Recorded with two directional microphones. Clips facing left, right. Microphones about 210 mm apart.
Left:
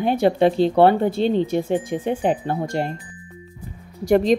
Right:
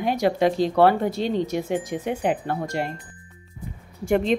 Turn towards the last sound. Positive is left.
turn(degrees=40)  # may be behind; listen again after turning